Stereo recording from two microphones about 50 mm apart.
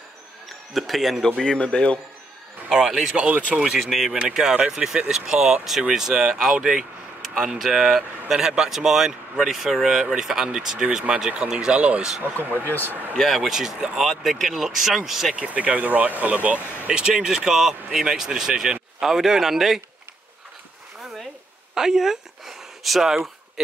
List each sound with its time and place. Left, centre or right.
0.7 s speech: centre
1.4 s speech: left
2.7 s speech: centre
3.2 s speech: right
4.2 s speech: centre
12.2 s speech: right
12.6 s speech: left
13.2 s speech: centre
13.5 s speech: centre
15.3 s speech: right
16.9 s speech: centre
21.0 s a sound: centre
21.7 s speech: centre